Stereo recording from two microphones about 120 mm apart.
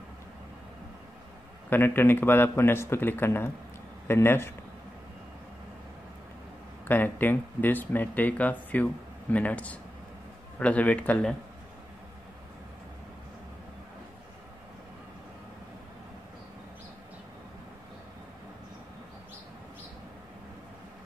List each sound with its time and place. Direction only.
1.7 s a man's voice: 15° left (ahead or behind)
6.9 s speech: 15° left (ahead or behind)